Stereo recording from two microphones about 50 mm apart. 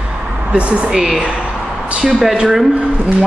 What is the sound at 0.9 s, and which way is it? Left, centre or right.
Speech, centre.